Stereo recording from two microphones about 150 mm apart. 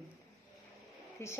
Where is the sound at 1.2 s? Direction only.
15° left (ahead or behind).